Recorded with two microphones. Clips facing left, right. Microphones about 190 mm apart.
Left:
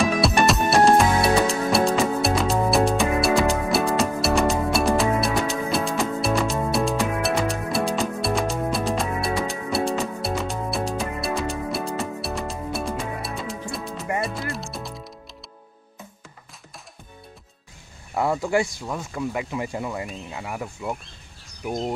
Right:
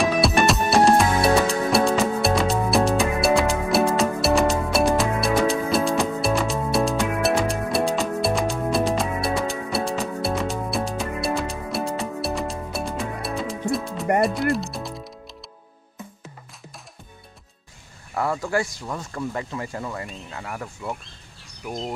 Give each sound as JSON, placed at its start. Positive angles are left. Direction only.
{"t": 0.0, "sound": "music", "side_deg": 0}
{"t": 18.1, "sound": "a sound", "side_deg": 15}
{"t": 18.8, "sound": "speech", "side_deg": 10}